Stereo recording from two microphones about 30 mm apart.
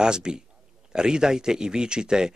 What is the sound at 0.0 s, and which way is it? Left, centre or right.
Speech, right.